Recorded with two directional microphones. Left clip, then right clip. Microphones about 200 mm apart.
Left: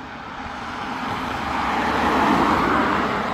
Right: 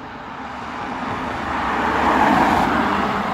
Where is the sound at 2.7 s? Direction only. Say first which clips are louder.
Right 1 dB; 55° right (ahead or behind).